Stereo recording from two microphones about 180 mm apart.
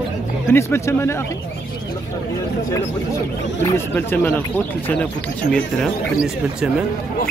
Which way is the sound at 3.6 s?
10° left (ahead or behind).